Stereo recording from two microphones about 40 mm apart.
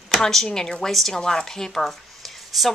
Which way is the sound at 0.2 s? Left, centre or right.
Centre.